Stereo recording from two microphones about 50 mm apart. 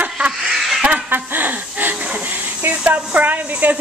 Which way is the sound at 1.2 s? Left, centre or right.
Right.